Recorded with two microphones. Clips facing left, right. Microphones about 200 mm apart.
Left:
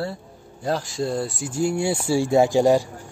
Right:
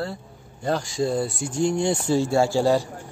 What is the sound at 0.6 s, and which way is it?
A man's voice, centre (ahead or behind).